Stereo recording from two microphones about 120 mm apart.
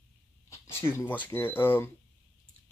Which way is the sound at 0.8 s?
15° left (ahead or behind).